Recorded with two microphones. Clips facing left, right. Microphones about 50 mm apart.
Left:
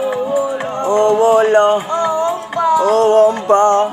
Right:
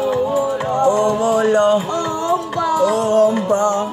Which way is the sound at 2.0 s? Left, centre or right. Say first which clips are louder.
Left 3 dB; left.